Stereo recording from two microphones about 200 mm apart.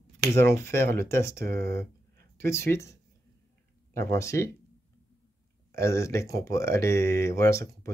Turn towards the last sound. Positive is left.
turn(degrees=15)  # may be behind; listen again after turning